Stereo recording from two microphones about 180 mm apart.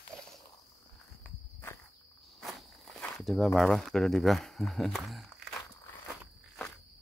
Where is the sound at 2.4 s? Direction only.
Centre (ahead or behind).